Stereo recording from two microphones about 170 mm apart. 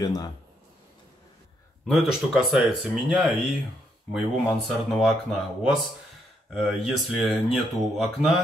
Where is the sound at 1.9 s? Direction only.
Centre (ahead or behind).